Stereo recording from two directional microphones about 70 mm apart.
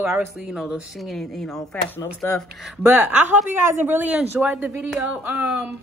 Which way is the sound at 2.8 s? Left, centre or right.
Right.